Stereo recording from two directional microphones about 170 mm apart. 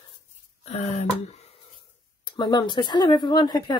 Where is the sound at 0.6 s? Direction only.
40° left (ahead or behind).